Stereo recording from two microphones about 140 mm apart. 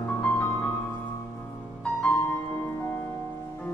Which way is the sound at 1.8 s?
10° left (ahead or behind).